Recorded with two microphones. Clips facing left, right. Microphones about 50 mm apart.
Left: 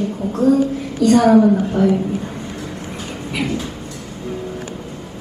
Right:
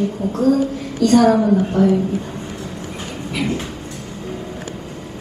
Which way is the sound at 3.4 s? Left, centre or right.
Right.